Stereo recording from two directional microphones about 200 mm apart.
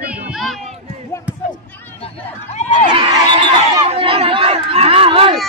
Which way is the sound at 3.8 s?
30° right (ahead or behind).